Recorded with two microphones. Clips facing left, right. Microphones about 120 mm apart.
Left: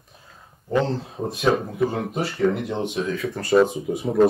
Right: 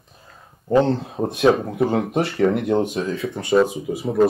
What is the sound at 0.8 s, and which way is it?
Speech, centre (ahead or behind).